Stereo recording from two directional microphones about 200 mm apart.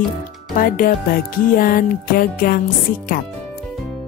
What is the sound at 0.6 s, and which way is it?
Music, 45° left (ahead or behind).